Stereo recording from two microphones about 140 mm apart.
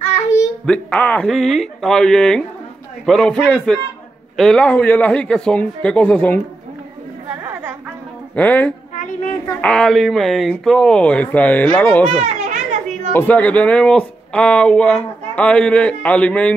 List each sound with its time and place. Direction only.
0.7 s speech: 10° left (ahead or behind)
8.4 s speech: 10° left (ahead or behind)
8.9 s a sound: 65° left (ahead or behind)
9.6 s speech: 5° left (ahead or behind)
12.2 s children playing: 55° right (ahead or behind)
13.1 s speech: 10° left (ahead or behind)